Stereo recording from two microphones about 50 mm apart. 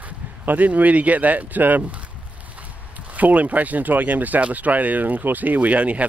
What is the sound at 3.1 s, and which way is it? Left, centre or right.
Speech, right.